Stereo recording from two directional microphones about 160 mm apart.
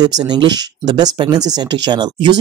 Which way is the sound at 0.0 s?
25° right (ahead or behind).